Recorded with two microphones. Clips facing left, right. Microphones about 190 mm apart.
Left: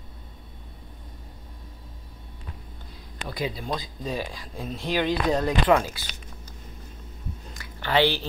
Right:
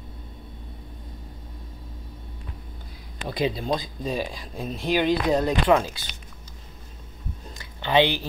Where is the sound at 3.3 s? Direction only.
25° right (ahead or behind).